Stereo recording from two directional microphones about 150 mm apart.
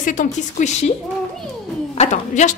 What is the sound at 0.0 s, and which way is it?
Speech, 60° left (ahead or behind).